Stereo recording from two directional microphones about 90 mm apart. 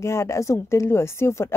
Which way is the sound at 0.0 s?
30° left (ahead or behind).